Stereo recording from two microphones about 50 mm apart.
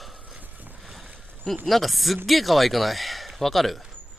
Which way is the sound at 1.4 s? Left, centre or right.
Centre.